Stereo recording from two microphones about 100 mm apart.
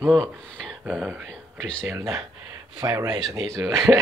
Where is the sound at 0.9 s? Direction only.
10° right (ahead or behind).